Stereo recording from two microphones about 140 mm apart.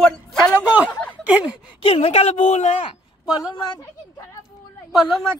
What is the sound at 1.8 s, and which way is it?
A woman's voice, 45° left (ahead or behind).